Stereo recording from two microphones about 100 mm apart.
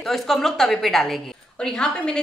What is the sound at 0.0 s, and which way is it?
A woman's voice, 5° left (ahead or behind).